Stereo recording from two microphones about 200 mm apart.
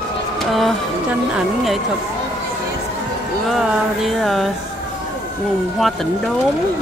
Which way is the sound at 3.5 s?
Centre (ahead or behind).